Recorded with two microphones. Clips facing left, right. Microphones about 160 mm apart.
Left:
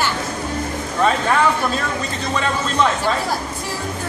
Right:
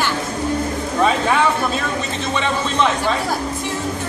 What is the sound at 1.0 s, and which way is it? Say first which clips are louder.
A man's voice: even; 5° right (ahead or behind).